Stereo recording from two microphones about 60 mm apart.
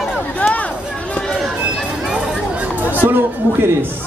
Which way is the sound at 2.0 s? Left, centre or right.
Centre.